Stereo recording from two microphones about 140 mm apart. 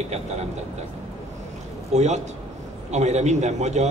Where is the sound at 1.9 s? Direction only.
55° right (ahead or behind).